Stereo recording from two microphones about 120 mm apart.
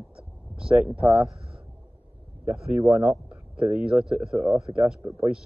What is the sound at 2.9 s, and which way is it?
A man's voice, 5° right (ahead or behind).